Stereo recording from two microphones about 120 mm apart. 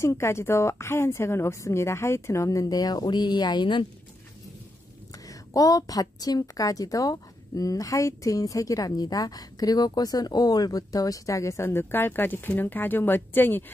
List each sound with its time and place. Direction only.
0.0 s a woman's voice: 25° left (ahead or behind); by 3.8 s 40° left (ahead or behind)
5.1 s a woman's voice: 30° left (ahead or behind)